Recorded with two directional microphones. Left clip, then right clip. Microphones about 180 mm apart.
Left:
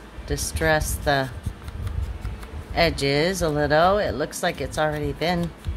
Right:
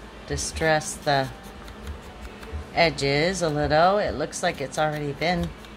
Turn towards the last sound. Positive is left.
turn(degrees=20)  # may be behind; listen again after turning